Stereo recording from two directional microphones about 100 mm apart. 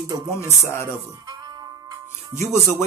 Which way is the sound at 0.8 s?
40° right (ahead or behind).